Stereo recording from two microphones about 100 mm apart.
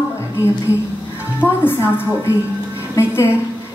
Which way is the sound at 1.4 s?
25° left (ahead or behind).